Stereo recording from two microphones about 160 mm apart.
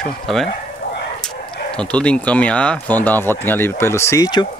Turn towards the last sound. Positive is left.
turn(degrees=25)  # may be behind; listen again after turning